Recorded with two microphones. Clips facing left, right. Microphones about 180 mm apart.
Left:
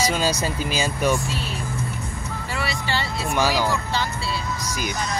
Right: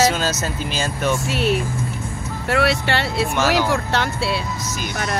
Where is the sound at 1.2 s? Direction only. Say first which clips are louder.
Right 9 dB; 70° right (ahead or behind).